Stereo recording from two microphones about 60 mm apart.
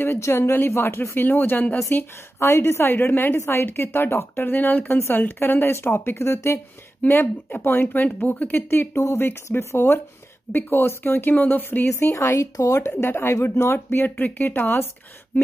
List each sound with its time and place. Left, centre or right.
0.0 s speech: left
2.0 s speech: left
7.0 s speech: left
8.5 s speech: left
10.5 s speech: left
12.1 s speech: left
13.0 s speech: left